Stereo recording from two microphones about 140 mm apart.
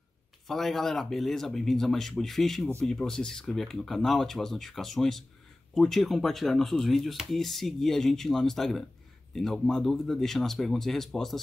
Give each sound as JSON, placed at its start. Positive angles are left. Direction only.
{"t": 0.5, "sound": "speech", "side_deg": 0}